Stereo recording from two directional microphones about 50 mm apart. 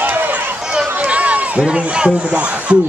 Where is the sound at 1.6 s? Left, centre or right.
Centre.